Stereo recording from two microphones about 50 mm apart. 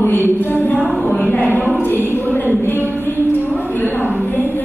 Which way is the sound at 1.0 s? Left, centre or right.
Left.